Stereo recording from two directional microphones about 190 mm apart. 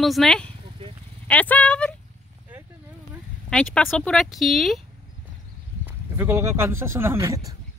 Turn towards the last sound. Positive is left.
turn(degrees=-15)  # may be behind; listen again after turning